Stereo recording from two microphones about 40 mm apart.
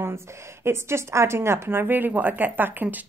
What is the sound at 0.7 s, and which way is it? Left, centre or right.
A woman's voice, right.